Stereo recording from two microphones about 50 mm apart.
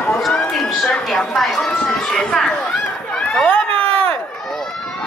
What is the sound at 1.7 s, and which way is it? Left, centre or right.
Run, centre.